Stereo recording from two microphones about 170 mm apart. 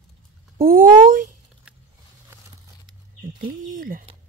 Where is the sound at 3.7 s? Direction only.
55° right (ahead or behind).